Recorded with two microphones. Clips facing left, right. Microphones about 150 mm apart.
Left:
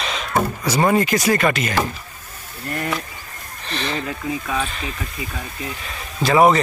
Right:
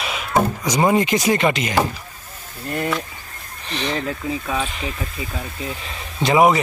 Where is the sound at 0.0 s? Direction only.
10° right (ahead or behind).